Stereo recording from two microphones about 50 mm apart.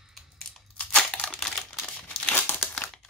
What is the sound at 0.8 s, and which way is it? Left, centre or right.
Crumpling, left.